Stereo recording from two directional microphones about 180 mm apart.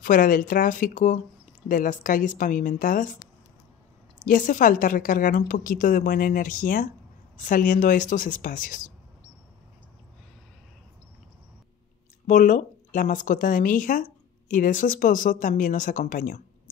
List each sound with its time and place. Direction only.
0.0 s a woman's voice: 50° left (ahead or behind)
4.2 s a woman's voice: 45° left (ahead or behind)
12.3 s a woman's voice: 45° left (ahead or behind)